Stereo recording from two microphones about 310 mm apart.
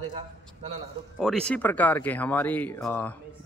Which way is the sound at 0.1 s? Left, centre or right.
Right.